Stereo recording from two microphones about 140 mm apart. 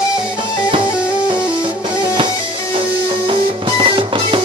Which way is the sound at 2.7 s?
40° right (ahead or behind).